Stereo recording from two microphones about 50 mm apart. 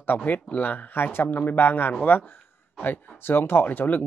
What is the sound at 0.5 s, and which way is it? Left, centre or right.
Speech, left.